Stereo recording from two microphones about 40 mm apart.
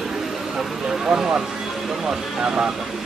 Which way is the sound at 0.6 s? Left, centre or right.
Centre.